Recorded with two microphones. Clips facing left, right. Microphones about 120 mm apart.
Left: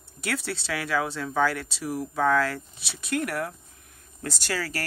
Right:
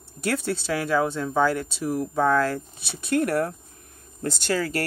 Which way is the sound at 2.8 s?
55° right (ahead or behind).